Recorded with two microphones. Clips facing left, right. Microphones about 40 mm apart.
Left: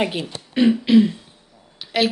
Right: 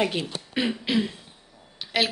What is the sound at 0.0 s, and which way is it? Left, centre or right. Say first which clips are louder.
A woman's voice: left 2 dB; centre.